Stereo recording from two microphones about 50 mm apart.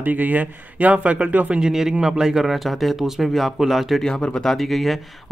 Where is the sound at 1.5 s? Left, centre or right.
Centre.